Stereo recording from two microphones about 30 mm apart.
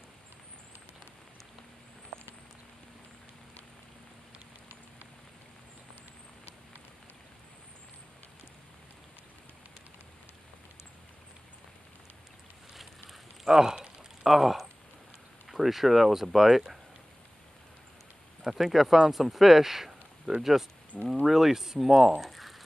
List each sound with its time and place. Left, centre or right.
13.5 s speech: centre
14.2 s speech: centre
18.4 s speech: centre
20.3 s speech: centre
21.3 s speech: centre
22.2 s a sound: centre